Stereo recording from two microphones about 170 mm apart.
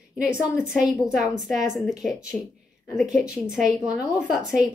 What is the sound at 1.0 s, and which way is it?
Speech, 50° right (ahead or behind).